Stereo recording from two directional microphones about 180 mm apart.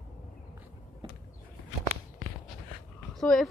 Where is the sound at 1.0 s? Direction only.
25° right (ahead or behind).